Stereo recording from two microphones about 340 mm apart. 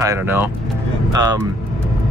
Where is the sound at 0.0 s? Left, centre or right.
Centre.